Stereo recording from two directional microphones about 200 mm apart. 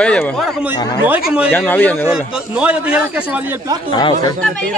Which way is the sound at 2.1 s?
5° right (ahead or behind).